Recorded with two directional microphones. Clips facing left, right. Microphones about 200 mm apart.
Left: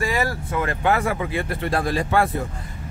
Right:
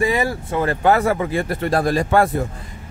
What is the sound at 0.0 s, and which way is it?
Speech, 20° right (ahead or behind).